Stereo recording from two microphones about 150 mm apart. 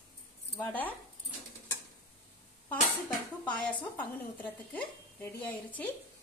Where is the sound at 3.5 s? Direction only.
30° left (ahead or behind).